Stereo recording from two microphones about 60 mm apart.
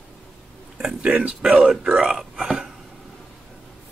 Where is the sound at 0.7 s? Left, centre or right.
Centre.